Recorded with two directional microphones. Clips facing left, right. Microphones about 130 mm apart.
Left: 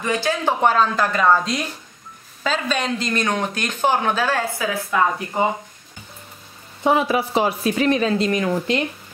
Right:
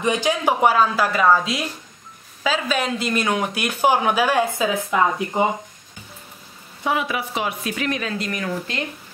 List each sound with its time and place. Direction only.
0.0 s speech: 15° right (ahead or behind)
6.8 s speech: 30° left (ahead or behind)